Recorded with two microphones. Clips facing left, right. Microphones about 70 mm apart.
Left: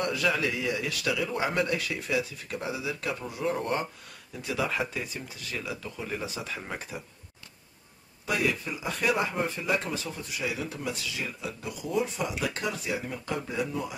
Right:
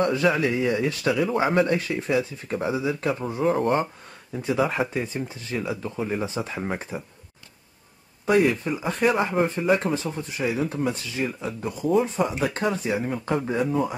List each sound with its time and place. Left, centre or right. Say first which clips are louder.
0.0 s speech: right 6 dB; right
8.3 s speech: right 9 dB; right